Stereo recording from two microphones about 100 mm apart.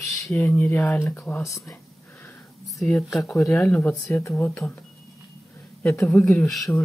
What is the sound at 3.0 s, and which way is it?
Speech, centre (ahead or behind).